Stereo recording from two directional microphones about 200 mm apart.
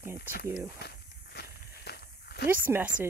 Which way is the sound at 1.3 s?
55° left (ahead or behind).